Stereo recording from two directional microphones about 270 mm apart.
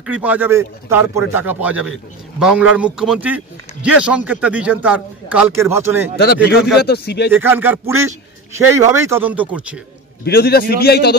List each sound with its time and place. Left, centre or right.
0.0 s a man's voice: centre
6.8 s a man's voice: left
7.3 s speech: centre
10.2 s a man's voice: left